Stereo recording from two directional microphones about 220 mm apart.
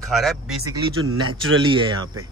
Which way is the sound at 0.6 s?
20° right (ahead or behind).